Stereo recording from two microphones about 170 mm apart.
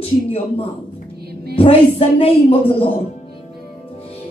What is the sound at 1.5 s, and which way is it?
Speech, 35° left (ahead or behind).